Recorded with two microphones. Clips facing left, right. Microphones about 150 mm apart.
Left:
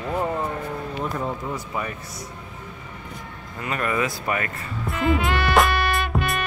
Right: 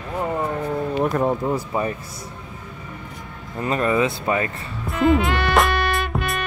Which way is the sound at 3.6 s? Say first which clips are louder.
Right 5 dB; 30° right (ahead or behind).